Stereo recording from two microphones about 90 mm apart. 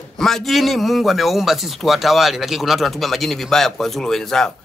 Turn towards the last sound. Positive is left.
turn(degrees=5)  # may be behind; listen again after turning